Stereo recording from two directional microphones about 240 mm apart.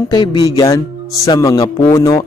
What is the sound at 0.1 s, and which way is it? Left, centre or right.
A man's voice, centre.